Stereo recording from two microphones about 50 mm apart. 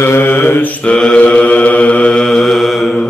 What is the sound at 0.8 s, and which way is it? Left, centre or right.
Mantra, centre.